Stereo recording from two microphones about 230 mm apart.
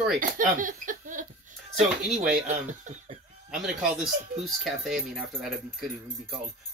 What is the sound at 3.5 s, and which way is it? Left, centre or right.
Speech, centre.